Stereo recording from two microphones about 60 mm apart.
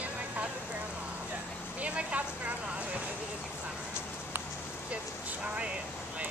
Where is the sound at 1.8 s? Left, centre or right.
Right.